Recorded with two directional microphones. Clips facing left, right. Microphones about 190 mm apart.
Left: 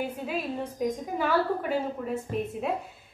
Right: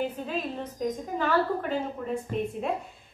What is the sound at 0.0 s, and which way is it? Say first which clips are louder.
A woman's voice: right 1 dB; 10° left (ahead or behind).